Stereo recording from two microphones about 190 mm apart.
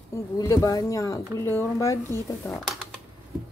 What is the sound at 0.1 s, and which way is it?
Speech, 15° left (ahead or behind).